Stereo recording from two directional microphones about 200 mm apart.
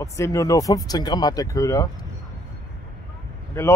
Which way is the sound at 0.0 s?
15° left (ahead or behind).